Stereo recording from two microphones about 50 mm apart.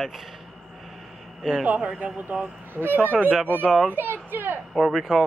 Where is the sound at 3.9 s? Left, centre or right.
Right.